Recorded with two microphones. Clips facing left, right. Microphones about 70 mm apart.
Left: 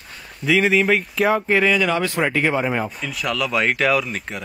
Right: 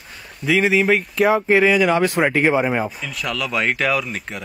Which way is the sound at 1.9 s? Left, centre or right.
Right.